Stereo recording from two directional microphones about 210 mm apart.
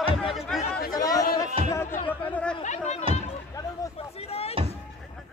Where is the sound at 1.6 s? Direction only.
25° right (ahead or behind).